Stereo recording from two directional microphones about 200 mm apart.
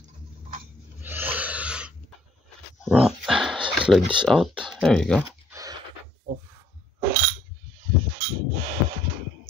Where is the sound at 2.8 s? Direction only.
Centre (ahead or behind).